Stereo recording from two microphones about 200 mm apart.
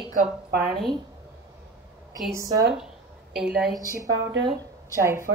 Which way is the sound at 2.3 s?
15° right (ahead or behind).